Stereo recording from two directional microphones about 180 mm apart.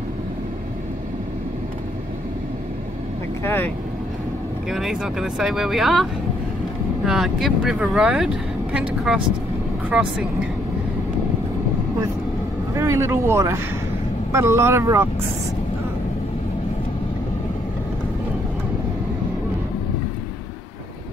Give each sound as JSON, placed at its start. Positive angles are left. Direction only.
{"t": 3.4, "sound": "speech", "side_deg": 10}
{"t": 4.6, "sound": "speech", "side_deg": 0}
{"t": 7.1, "sound": "speech", "side_deg": 0}
{"t": 12.7, "sound": "speech", "side_deg": -15}